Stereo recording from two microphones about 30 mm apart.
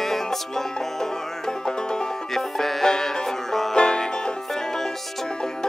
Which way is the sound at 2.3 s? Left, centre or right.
Centre.